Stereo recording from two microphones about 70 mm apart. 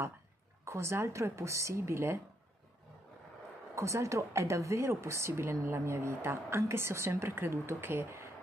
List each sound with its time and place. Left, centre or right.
0.7 s speech: right
3.7 s speech: right